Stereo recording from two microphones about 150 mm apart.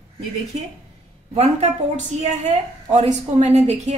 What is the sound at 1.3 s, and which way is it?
A woman's voice, 40° right (ahead or behind).